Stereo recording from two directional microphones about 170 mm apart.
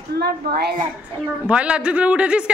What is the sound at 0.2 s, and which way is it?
Speech, 70° right (ahead or behind).